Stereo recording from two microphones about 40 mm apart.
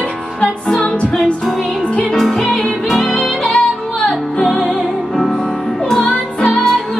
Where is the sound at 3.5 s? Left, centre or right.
Left; by 6.8 s centre.